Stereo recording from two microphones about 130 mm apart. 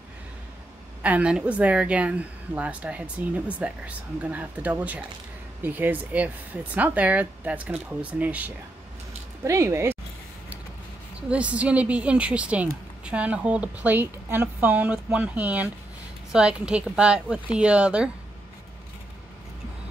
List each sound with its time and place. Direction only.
1.0 s a woman's voice: 10° right (ahead or behind)
11.1 s a woman's voice: 10° right (ahead or behind)